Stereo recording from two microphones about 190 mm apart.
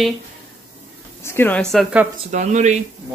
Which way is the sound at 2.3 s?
40° right (ahead or behind).